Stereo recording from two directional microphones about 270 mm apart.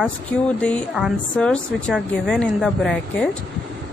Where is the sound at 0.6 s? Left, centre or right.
Centre.